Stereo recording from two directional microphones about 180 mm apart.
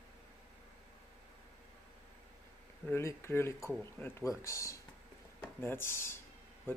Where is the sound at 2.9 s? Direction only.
15° left (ahead or behind).